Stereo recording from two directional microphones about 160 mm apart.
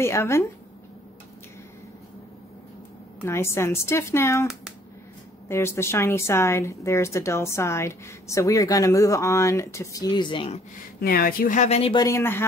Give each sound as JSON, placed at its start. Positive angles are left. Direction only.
{"t": 0.0, "sound": "a woman's voice", "side_deg": 15}
{"t": 3.2, "sound": "a woman's voice", "side_deg": 15}
{"t": 5.5, "sound": "a woman's voice", "side_deg": 15}
{"t": 11.0, "sound": "a woman's voice", "side_deg": 70}
{"t": 11.9, "sound": "a woman's voice", "side_deg": 20}